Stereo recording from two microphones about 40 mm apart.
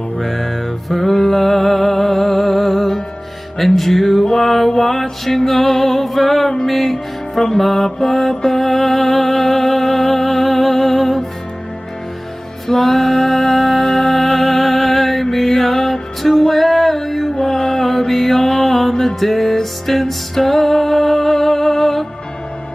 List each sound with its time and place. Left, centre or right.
0.2 s music: centre
12.6 s music: centre